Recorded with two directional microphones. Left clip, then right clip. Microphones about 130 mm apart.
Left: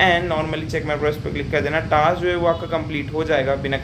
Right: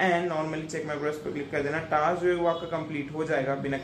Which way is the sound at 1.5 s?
20° left (ahead or behind).